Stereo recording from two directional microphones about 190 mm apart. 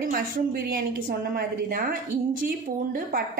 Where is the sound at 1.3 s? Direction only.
50° right (ahead or behind).